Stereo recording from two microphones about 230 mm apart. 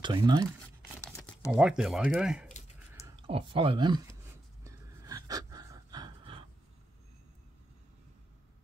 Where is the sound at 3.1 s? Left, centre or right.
Right.